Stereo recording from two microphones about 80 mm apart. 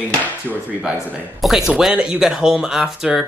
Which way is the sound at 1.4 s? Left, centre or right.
Centre.